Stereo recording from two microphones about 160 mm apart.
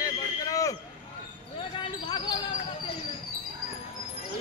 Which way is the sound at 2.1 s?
30° left (ahead or behind).